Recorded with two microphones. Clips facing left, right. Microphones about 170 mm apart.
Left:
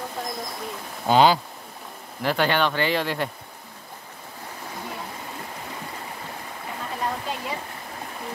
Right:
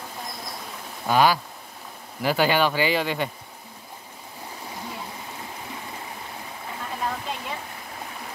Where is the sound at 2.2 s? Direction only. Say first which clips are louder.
Right 1 dB; 5° right (ahead or behind).